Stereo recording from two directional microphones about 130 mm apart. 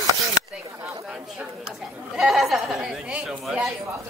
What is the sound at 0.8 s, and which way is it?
Chatter, 5° right (ahead or behind).